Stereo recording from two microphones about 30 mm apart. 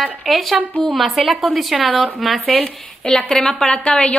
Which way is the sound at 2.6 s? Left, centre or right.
Left.